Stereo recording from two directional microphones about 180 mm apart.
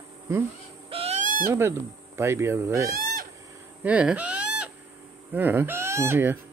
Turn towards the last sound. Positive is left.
turn(degrees=-10)  # may be behind; listen again after turning